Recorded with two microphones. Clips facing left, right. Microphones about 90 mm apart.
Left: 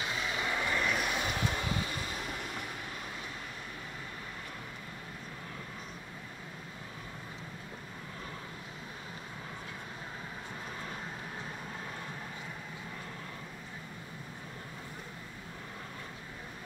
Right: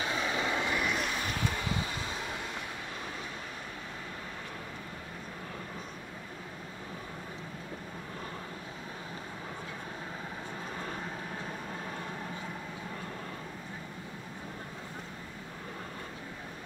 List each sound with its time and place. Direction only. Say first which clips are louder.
0.1 s vehicle: right 3 dB; 25° right (ahead or behind)
0.9 s vehicle: even; 15° left (ahead or behind)